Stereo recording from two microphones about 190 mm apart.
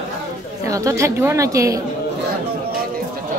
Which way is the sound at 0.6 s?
15° right (ahead or behind).